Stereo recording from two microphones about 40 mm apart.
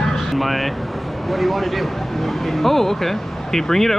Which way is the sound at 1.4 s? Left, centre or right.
Centre.